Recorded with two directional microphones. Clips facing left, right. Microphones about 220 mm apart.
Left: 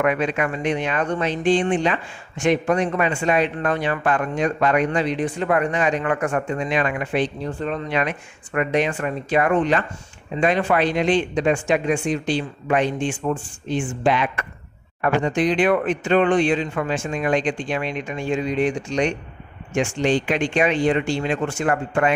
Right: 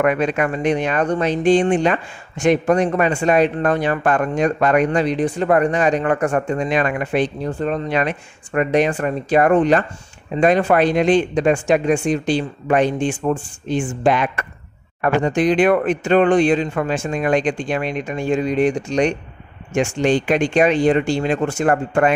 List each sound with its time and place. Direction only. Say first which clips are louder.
0.0 s speech: right 3 dB; 45° right (ahead or behind)